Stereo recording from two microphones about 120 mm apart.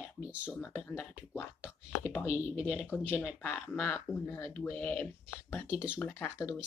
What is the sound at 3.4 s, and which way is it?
Speech, 15° left (ahead or behind).